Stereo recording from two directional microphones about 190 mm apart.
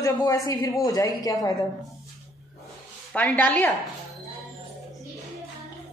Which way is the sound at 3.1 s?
10° left (ahead or behind).